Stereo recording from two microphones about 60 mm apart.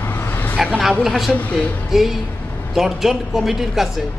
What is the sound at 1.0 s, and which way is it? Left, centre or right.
Speech, centre.